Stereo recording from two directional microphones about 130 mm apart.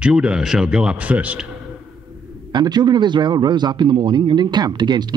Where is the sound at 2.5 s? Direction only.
35° right (ahead or behind).